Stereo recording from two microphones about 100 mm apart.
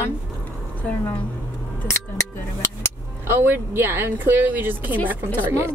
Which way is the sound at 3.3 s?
20° right (ahead or behind).